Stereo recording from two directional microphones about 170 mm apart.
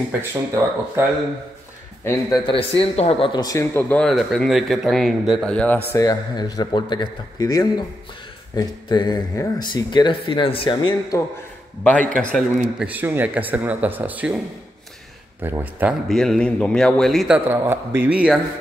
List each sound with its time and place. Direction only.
0.3 s speech: 15° right (ahead or behind)
2.0 s speech: 25° left (ahead or behind)
4.0 s speech: centre (ahead or behind)
5.9 s speech: 20° left (ahead or behind)
12.2 s speech: 5° left (ahead or behind)
15.4 s speech: 10° right (ahead or behind)
16.1 s speech: centre (ahead or behind)
17.5 s speech: 10° right (ahead or behind)